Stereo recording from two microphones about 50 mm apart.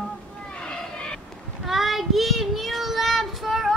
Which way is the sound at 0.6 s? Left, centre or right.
Centre.